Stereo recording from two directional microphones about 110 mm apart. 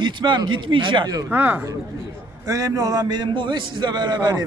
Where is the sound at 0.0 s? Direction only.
45° right (ahead or behind).